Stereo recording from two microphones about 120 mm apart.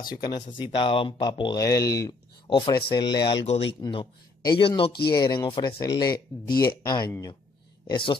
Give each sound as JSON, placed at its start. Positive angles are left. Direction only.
{"t": 0.0, "sound": "speech", "side_deg": 35}
{"t": 0.6, "sound": "speech", "side_deg": 45}
{"t": 2.5, "sound": "speech", "side_deg": 35}
{"t": 3.4, "sound": "speech", "side_deg": 60}
{"t": 3.9, "sound": "a man's voice", "side_deg": 40}